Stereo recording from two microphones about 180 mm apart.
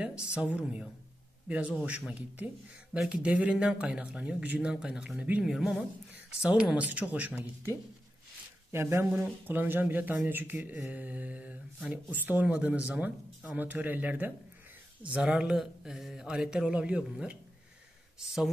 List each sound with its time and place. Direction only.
0.0 s speech: 5° right (ahead or behind)
8.7 s speech: 15° right (ahead or behind)